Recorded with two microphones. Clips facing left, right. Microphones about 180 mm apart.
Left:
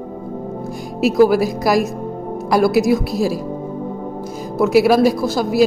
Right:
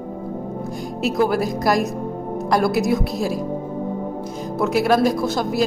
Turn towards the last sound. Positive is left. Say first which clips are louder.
# left 3 dB
turn(degrees=5)  # may be behind; listen again after turning